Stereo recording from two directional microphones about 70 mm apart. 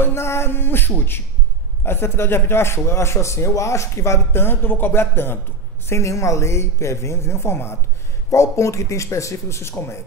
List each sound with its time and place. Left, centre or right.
0.0 s a man's voice: left
5.9 s a man's voice: left
8.3 s speech: left